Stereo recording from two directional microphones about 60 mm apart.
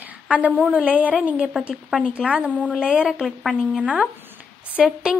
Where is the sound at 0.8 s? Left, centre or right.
Right.